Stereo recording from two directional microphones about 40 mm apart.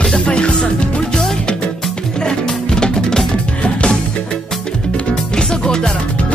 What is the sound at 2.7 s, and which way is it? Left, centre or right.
Music, centre.